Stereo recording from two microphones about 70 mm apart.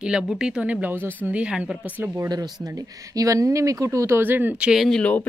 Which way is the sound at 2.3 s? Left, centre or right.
Right.